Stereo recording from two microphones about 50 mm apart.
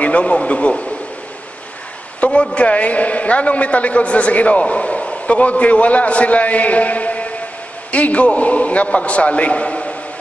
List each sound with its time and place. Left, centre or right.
0.0 s a man's voice: left
2.1 s a man's voice: left